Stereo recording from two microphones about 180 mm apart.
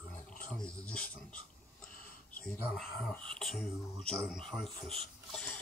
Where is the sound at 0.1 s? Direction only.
45° left (ahead or behind).